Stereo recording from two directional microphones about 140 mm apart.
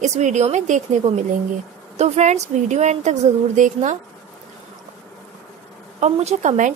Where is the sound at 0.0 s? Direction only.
55° right (ahead or behind).